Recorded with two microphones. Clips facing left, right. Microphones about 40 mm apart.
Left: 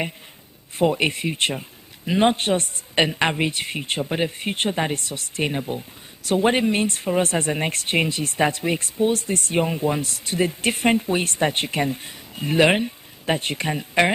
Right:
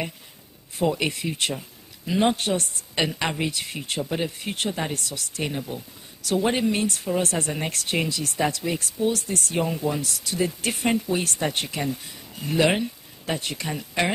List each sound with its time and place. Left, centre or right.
0.7 s speech: left